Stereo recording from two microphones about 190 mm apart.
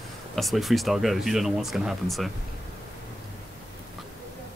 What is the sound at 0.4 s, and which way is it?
Speech, centre (ahead or behind).